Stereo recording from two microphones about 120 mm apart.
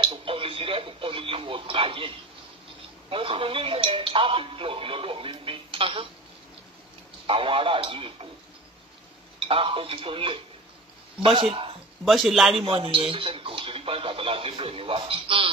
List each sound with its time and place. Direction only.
0.0 s radio: 45° right (ahead or behind)
3.1 s a man's voice: 50° right (ahead or behind)
7.2 s a man's voice: 50° right (ahead or behind)
9.5 s a man's voice: 50° right (ahead or behind)
12.0 s speech: centre (ahead or behind)
12.6 s a man's voice: 50° right (ahead or behind)